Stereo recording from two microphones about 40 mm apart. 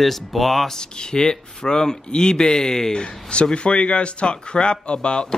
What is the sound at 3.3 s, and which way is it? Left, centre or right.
Speech, left.